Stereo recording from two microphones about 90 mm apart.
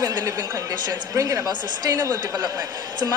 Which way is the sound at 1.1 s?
40° right (ahead or behind).